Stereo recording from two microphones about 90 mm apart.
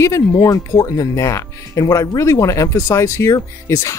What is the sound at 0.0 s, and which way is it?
Speech, 35° left (ahead or behind).